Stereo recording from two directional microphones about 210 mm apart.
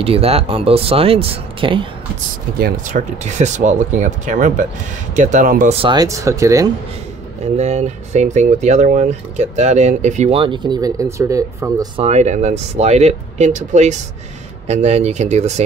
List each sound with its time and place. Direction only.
0.0 s speech: 30° right (ahead or behind)
2.6 s speech: 35° right (ahead or behind)
5.8 s speech: 20° right (ahead or behind)
7.4 s speech: 30° right (ahead or behind); by 11.9 s 15° right (ahead or behind)
12.0 s speech: 35° right (ahead or behind)